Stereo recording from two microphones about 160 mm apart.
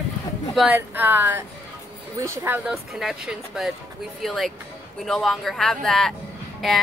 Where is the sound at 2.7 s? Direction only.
Centre (ahead or behind).